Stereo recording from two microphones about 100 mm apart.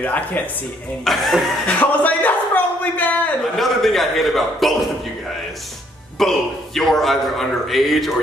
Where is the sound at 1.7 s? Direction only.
15° left (ahead or behind).